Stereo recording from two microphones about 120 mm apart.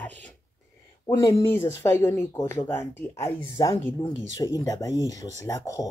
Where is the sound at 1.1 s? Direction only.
25° left (ahead or behind).